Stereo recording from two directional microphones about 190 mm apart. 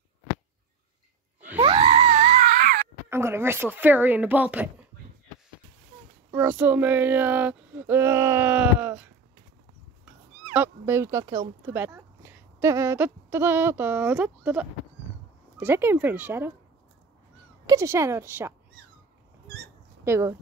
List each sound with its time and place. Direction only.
1.6 s screaming: 30° right (ahead or behind); by 2.9 s 50° right (ahead or behind)
3.1 s speech: 10° right (ahead or behind)
6.3 s speech: 10° right (ahead or behind)
10.4 s speech: 10° right (ahead or behind)
17.6 s speech: 15° right (ahead or behind)
19.4 s squeak: 60° right (ahead or behind)
20.1 s speech: 15° right (ahead or behind)